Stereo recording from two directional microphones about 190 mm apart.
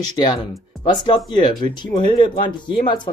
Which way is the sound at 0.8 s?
25° left (ahead or behind).